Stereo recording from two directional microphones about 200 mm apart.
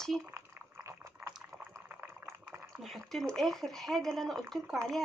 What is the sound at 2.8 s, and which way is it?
Speech, centre (ahead or behind).